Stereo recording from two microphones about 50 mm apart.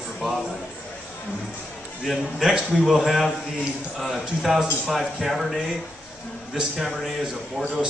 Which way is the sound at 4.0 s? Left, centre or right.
Centre.